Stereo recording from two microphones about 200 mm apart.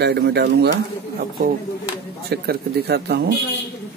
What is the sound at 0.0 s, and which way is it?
Speech, 55° right (ahead or behind).